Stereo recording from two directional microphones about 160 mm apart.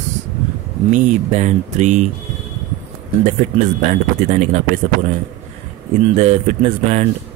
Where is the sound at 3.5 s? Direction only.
50° right (ahead or behind).